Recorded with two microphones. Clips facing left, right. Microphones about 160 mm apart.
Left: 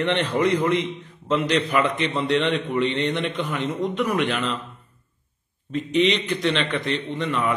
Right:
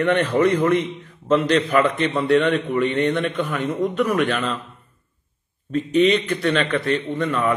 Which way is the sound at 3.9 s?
15° left (ahead or behind).